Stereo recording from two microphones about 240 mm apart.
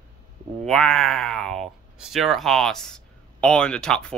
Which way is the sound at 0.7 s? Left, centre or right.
Centre.